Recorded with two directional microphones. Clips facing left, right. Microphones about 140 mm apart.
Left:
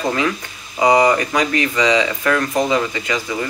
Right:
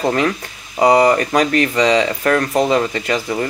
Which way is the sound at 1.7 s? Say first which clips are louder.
Right 2 dB; 40° right (ahead or behind).